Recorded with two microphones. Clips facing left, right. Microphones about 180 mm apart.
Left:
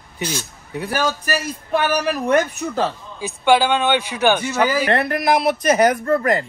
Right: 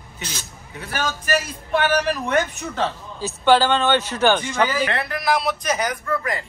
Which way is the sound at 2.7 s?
15° left (ahead or behind).